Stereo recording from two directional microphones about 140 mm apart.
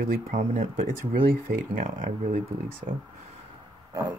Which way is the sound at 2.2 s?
50° right (ahead or behind).